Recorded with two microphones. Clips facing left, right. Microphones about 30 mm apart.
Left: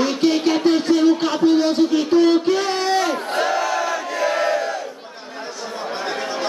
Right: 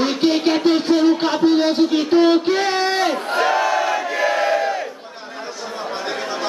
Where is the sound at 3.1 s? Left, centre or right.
Centre.